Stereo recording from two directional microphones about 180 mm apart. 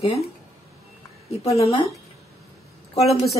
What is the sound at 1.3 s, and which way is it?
Speech, 35° left (ahead or behind).